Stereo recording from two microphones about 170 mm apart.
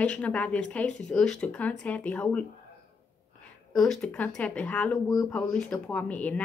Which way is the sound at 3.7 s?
5° left (ahead or behind).